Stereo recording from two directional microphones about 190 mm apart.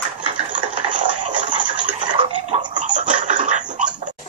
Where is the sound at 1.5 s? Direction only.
25° right (ahead or behind).